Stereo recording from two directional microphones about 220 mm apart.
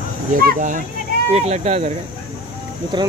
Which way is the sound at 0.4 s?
40° right (ahead or behind).